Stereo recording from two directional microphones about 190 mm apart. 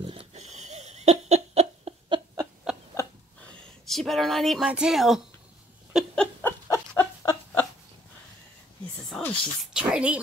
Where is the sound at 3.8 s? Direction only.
Centre (ahead or behind).